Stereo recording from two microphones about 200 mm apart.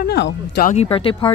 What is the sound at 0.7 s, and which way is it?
Speech, 30° left (ahead or behind).